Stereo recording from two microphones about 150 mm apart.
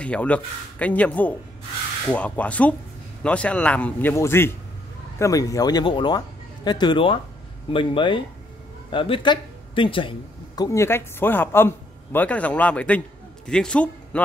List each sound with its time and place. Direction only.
0.0 s a man's voice: 10° left (ahead or behind)